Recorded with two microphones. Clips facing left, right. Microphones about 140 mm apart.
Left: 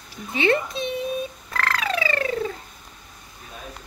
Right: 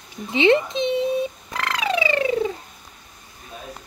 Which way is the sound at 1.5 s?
15° right (ahead or behind).